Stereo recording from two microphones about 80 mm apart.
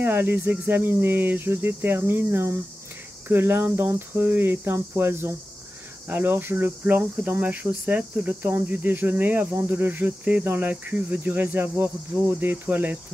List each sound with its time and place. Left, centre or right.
0.0 s speech: right
3.3 s cricket: right
6.0 s speech: right